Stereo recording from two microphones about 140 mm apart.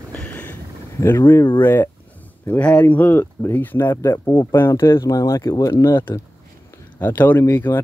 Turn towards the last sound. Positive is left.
turn(degrees=15)  # may be behind; listen again after turning